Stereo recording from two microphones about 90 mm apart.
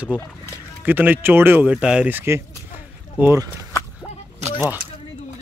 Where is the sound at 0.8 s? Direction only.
20° right (ahead or behind).